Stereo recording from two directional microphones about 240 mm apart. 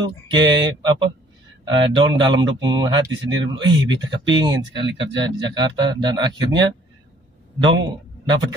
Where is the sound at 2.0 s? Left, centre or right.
Centre.